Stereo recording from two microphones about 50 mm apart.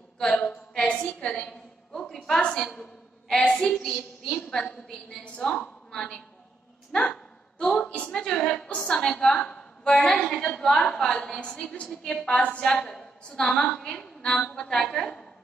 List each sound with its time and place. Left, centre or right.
0.2 s a woman's voice: left
1.5 s a sound: centre
2.2 s a woman's voice: centre
9.3 s a sound: left
9.9 s a woman's voice: centre
12.9 s a woman's voice: centre